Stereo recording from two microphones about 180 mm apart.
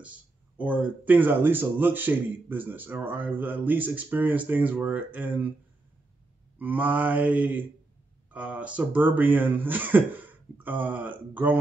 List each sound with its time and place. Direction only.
0.0 s speech: 5° right (ahead or behind)
6.6 s speech: 10° right (ahead or behind)